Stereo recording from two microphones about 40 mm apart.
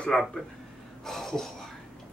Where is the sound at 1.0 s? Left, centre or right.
Centre.